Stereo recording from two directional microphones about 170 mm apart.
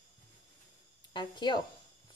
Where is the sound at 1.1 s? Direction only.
25° left (ahead or behind).